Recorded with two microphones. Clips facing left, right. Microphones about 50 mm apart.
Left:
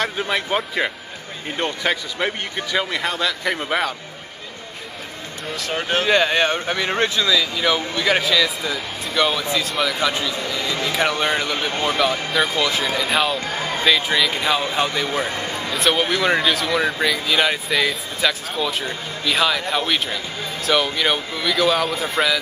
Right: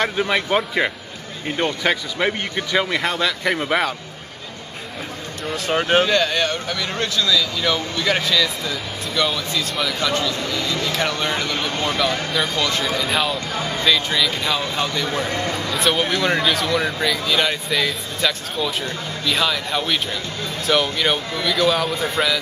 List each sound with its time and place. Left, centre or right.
0.2 s speech: centre
5.7 s speech: right
6.0 s speech: centre
9.7 s speech: centre
9.9 s speech: centre
15.7 s speech: centre